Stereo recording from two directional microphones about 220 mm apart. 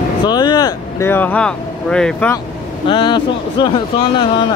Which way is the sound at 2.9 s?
20° left (ahead or behind).